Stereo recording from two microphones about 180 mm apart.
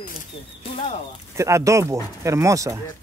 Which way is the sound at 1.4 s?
15° right (ahead or behind).